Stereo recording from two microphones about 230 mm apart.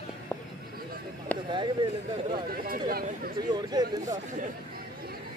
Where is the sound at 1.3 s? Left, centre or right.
Centre.